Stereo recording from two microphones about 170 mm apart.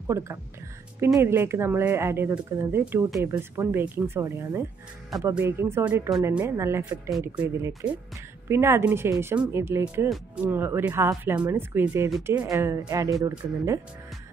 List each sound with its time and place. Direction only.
0.0 s speech: 15° right (ahead or behind)
10.0 s speech: 5° right (ahead or behind); by 13.1 s 20° right (ahead or behind)